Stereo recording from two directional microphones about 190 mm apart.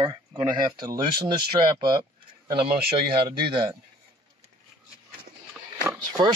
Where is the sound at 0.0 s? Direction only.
25° right (ahead or behind).